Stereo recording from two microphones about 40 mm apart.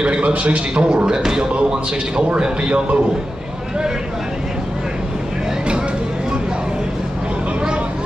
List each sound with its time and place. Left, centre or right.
0.0 s a man's voice: right
0.7 s a man's voice: right